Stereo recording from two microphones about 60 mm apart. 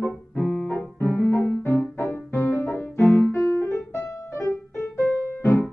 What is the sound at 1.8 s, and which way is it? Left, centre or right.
Music, left.